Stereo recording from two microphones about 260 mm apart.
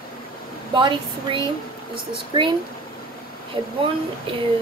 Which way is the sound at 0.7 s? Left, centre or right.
Centre.